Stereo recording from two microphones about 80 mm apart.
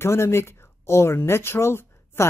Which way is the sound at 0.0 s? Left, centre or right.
Left.